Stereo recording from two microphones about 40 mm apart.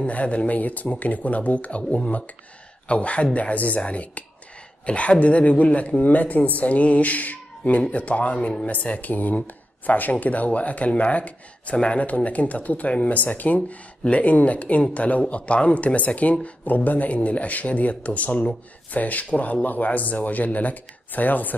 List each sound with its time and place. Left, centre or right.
0.0 s speech: left